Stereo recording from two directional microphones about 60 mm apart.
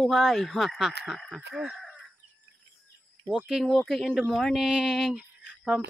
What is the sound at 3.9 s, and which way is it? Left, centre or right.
A man's voice, centre.